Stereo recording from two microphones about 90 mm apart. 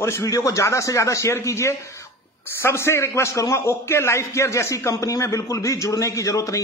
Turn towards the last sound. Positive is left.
turn(degrees=35)  # may be behind; listen again after turning